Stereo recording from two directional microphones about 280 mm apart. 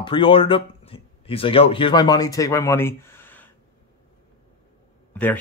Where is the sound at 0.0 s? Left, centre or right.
Centre.